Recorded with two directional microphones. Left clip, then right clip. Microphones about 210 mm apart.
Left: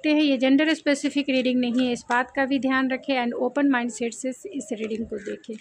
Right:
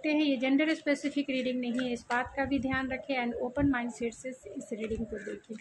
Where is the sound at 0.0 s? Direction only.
55° left (ahead or behind).